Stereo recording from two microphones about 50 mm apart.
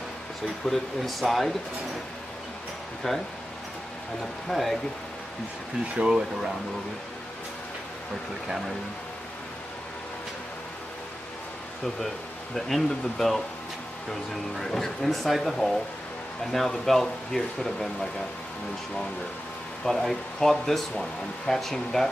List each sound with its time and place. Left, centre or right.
0.7 s speech: centre
3.0 s speech: centre
4.5 s speech: centre
5.9 s speech: centre
12.5 s speech: centre
19.8 s speech: centre